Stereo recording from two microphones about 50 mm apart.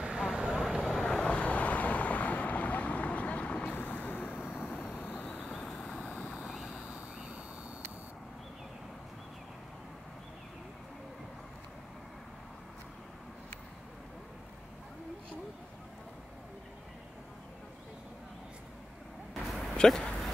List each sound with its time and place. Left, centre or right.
0.0 s vehicle: centre
0.8 s vehicle: centre
1.2 s vehicle: left
5.4 s vehicle: centre
6.4 s vehicle: centre
6.7 s vehicle: right
19.3 s a sound: centre
19.8 s speech: centre